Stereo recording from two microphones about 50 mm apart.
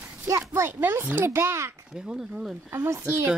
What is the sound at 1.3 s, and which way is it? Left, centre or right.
Speech, right.